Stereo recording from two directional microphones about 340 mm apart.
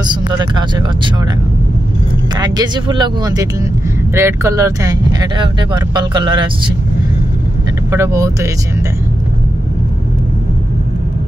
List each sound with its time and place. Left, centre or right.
0.0 s speech: centre
2.3 s speech: centre
7.9 s speech: centre